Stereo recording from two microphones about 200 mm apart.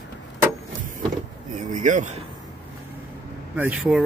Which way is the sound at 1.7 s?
40° right (ahead or behind).